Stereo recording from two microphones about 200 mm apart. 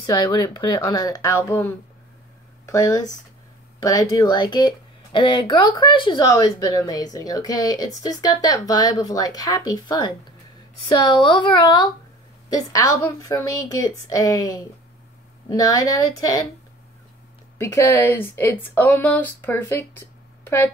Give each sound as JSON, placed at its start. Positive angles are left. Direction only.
{"t": 0.0, "sound": "speech", "side_deg": 20}
{"t": 15.6, "sound": "speech", "side_deg": 15}
{"t": 17.6, "sound": "speech", "side_deg": 15}